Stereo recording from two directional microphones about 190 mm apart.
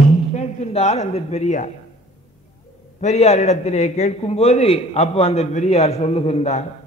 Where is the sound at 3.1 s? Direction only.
35° left (ahead or behind).